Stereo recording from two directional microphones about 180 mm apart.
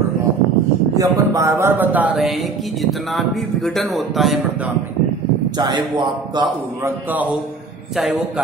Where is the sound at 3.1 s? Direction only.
Centre (ahead or behind).